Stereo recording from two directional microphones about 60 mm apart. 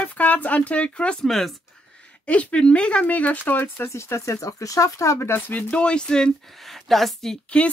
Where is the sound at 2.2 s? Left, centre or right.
Left.